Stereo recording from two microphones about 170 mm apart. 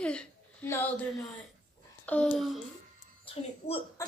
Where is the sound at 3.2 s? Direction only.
35° left (ahead or behind).